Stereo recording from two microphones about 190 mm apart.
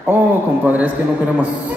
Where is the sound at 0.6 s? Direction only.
10° right (ahead or behind).